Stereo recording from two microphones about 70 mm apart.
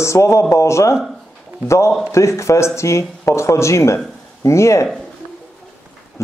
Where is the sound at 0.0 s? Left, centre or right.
Left.